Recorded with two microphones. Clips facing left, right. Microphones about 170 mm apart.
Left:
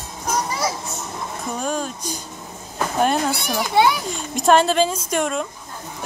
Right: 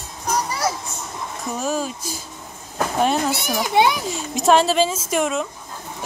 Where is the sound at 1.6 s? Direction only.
5° right (ahead or behind).